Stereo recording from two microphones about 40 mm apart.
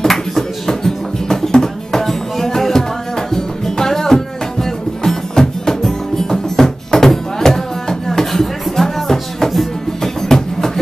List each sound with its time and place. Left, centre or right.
0.0 s music: centre